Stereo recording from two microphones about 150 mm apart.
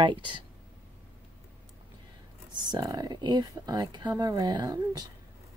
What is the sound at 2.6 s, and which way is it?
Speech, 25° right (ahead or behind).